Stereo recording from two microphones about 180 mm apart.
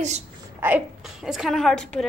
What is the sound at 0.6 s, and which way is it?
A woman's voice, 10° right (ahead or behind).